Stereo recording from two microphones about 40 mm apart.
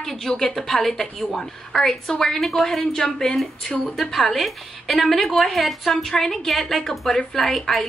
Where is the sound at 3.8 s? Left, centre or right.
Centre.